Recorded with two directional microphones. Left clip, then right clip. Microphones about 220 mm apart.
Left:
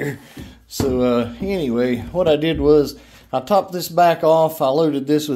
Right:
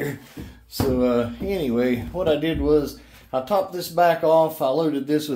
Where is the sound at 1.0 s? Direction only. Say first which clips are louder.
Left 3 dB; 40° left (ahead or behind).